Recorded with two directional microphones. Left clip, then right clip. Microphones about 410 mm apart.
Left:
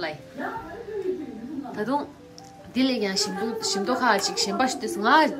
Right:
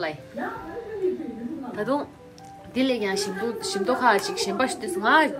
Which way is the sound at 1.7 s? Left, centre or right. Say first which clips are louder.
Right 1 dB; centre.